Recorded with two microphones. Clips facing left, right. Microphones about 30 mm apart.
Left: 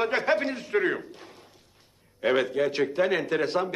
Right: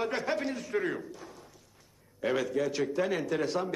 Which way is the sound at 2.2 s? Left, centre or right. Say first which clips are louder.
Left 5 dB; left.